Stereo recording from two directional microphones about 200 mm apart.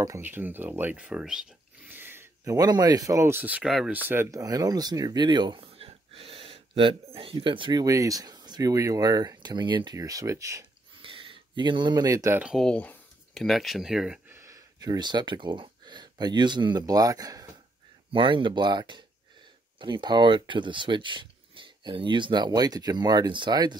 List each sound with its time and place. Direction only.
0.0 s speech: 15° right (ahead or behind)
11.0 s speech: 25° right (ahead or behind); by 14.4 s 5° right (ahead or behind)
14.4 s speech: 15° right (ahead or behind)